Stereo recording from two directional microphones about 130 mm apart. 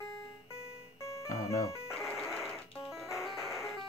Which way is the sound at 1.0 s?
20° left (ahead or behind).